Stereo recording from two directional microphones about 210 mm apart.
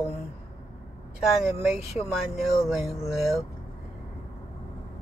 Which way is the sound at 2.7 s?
Centre (ahead or behind).